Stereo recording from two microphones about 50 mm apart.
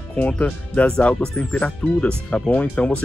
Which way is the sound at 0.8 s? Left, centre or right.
Centre.